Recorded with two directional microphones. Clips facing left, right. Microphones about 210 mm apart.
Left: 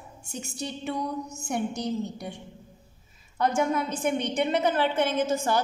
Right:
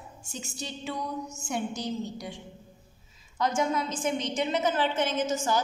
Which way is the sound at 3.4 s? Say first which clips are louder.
Left 2 dB; 65° left (ahead or behind).